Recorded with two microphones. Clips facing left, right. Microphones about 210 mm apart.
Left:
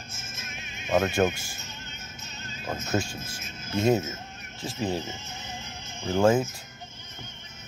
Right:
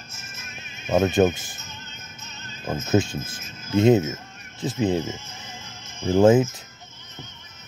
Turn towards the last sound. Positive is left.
turn(degrees=-20)  # may be behind; listen again after turning